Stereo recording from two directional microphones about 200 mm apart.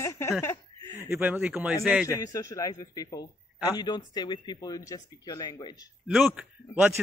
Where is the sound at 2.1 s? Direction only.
15° left (ahead or behind).